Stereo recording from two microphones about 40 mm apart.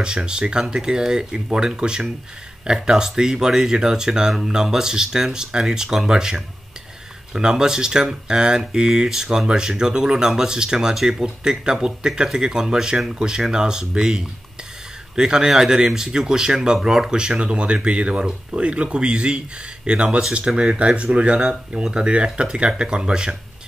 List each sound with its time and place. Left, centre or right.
0.0 s speech: right